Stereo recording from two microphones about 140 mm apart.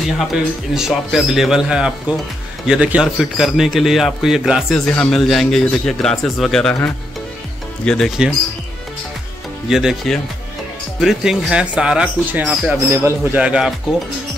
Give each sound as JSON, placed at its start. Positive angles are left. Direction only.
{"t": 0.3, "sound": "a man's voice", "side_deg": 0}
{"t": 7.8, "sound": "a man's voice", "side_deg": 5}
{"t": 9.7, "sound": "a man's voice", "side_deg": -5}